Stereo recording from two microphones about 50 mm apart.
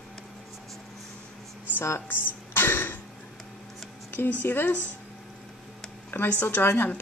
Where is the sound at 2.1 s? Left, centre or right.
Left.